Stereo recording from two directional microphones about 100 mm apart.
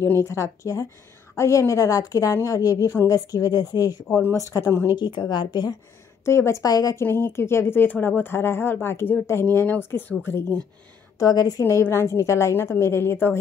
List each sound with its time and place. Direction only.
0.0 s speech: 25° left (ahead or behind)
4.9 s a woman's voice: 50° left (ahead or behind)
6.2 s speech: 30° left (ahead or behind)
7.1 s speech: 20° left (ahead or behind)
11.1 s speech: 35° left (ahead or behind)